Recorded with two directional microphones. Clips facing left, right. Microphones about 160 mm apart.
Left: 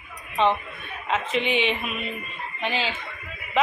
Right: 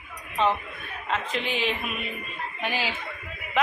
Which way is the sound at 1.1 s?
Centre (ahead or behind).